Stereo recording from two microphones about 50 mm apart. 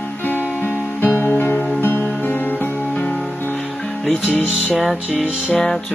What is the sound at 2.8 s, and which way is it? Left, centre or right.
Music, left.